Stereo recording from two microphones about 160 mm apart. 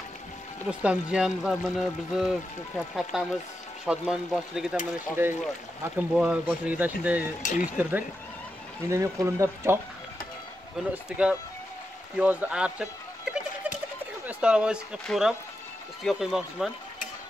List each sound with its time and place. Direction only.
0.7 s speech: 5° right (ahead or behind)
4.9 s speech: 15° right (ahead or behind)
8.8 s speech: 20° right (ahead or behind)
11.1 s speech: 5° right (ahead or behind)
13.7 s a sound: 10° right (ahead or behind)
14.2 s speech: 5° right (ahead or behind)